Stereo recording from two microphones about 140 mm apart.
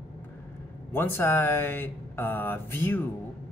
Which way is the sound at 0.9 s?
15° left (ahead or behind).